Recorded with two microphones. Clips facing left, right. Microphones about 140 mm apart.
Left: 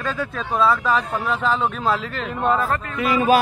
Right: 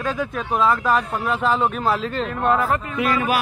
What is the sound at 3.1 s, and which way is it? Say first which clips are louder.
Speech: left 6 dB; 25° left (ahead or behind).